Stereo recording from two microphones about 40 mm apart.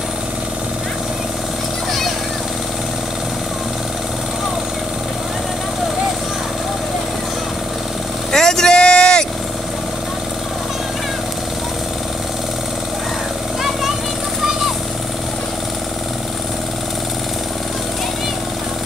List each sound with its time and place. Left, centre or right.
8.3 s vehicle: centre